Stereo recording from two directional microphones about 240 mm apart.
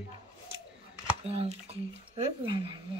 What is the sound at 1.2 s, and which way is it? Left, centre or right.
Speech, right.